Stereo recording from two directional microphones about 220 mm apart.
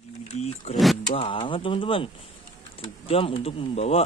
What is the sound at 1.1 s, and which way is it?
Speech, 25° left (ahead or behind).